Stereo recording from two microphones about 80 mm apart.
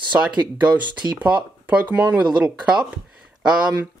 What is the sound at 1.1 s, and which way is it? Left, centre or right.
Speech, centre.